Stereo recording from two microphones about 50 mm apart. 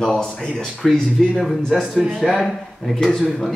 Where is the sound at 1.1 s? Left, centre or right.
Centre.